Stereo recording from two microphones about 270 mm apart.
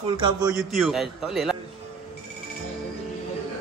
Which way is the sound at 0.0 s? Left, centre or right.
Centre.